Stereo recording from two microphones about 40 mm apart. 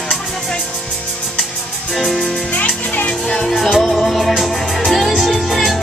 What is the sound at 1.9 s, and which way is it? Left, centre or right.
Music, centre.